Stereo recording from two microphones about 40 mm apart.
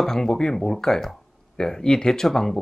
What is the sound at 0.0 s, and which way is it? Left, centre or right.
Speech, centre.